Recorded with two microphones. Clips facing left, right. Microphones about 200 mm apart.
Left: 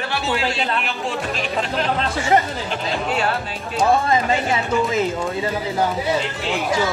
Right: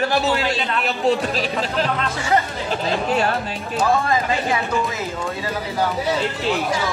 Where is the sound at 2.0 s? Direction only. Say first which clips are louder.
Left 2 dB; 30° left (ahead or behind).